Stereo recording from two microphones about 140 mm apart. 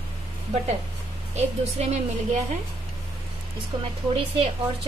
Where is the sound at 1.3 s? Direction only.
50° right (ahead or behind).